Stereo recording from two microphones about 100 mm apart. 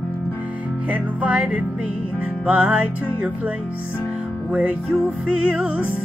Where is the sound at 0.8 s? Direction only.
15° right (ahead or behind).